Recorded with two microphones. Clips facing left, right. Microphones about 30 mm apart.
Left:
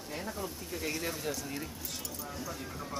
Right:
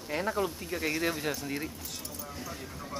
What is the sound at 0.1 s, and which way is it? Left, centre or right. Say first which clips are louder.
Speech: right 9 dB; right.